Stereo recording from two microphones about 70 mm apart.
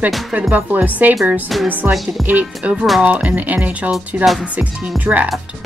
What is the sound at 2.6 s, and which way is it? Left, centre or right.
Speech, centre.